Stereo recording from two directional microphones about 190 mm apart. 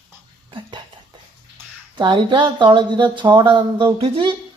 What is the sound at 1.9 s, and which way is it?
Speech, 25° right (ahead or behind).